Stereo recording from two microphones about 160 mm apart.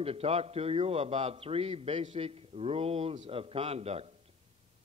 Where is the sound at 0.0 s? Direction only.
40° right (ahead or behind).